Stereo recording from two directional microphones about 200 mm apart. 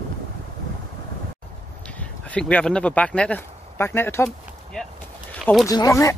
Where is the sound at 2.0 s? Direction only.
5° left (ahead or behind).